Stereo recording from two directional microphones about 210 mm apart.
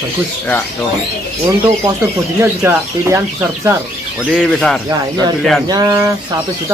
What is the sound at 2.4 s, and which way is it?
Speech, 10° right (ahead or behind).